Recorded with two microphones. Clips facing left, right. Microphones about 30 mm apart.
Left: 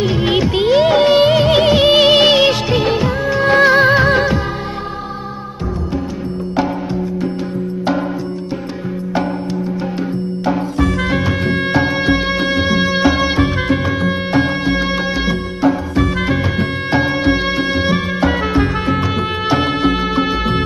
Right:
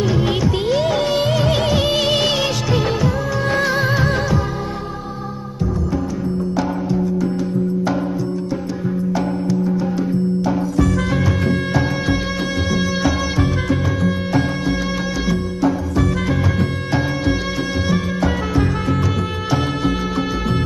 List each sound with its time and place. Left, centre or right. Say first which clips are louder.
0.0 s music: left 3 dB; left
6.5 s music: left 5 dB; left
10.4 s music: left 1 dB; left